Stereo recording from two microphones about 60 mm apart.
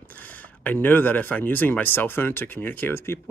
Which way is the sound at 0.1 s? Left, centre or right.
Left.